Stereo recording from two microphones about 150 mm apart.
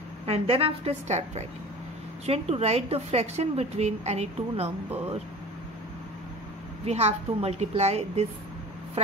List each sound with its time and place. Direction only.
0.3 s a woman's voice: 40° right (ahead or behind)
6.9 s a woman's voice: 45° right (ahead or behind)